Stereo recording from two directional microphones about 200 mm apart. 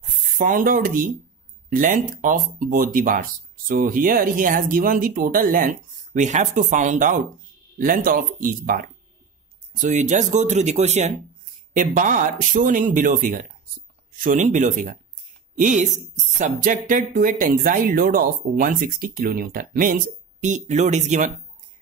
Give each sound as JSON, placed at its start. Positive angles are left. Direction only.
{"t": 0.4, "sound": "speech", "side_deg": -45}